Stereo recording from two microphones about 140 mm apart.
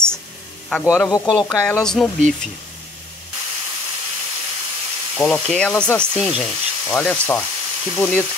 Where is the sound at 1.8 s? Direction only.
5° left (ahead or behind).